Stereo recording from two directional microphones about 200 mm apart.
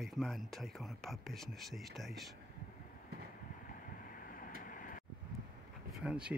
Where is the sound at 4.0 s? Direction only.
45° left (ahead or behind).